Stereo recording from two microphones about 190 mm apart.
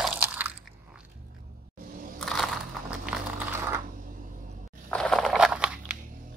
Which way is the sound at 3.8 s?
45° right (ahead or behind).